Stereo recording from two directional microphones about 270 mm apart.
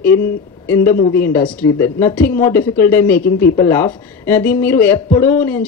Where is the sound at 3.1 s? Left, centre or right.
Left.